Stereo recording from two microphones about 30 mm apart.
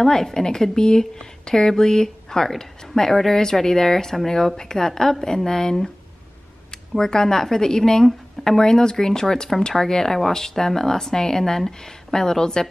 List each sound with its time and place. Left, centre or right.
0.0 s speech: centre